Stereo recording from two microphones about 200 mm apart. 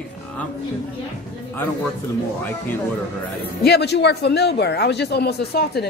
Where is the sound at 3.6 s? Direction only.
55° left (ahead or behind).